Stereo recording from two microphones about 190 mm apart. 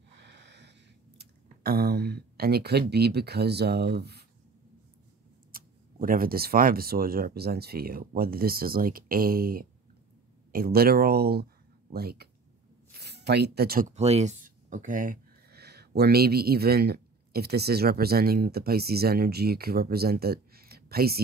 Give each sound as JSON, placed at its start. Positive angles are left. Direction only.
{"t": 0.2, "sound": "a sound", "side_deg": -65}
{"t": 5.5, "sound": "speech", "side_deg": -50}
{"t": 13.9, "sound": "speech", "side_deg": -35}